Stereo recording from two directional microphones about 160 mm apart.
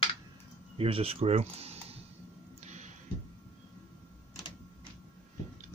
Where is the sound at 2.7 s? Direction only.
45° right (ahead or behind).